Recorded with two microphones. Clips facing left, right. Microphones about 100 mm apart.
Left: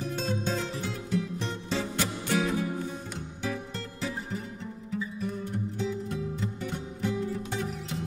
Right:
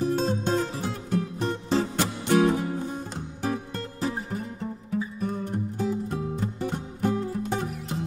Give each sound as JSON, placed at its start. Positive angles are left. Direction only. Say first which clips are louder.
{"t": 0.0, "sound": "music", "louder": "right 6 dB", "side_deg": -45}
{"t": 3.4, "sound": "music", "louder": "right 5 dB", "side_deg": -45}